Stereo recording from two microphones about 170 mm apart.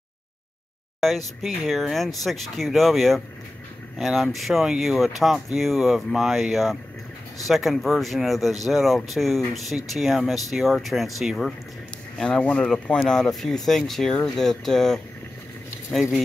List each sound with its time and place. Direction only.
1.0 s speech: centre (ahead or behind)